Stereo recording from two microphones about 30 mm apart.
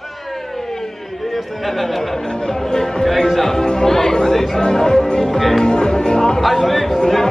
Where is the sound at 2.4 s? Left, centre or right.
Centre.